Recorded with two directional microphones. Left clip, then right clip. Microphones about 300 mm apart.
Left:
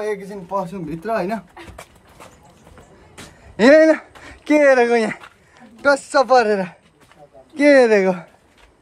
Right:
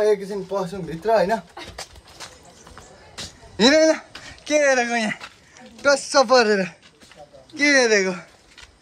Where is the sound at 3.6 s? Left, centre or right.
Left; by 8.2 s centre.